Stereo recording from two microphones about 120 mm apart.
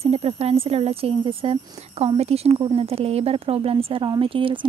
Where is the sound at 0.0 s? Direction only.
55° right (ahead or behind).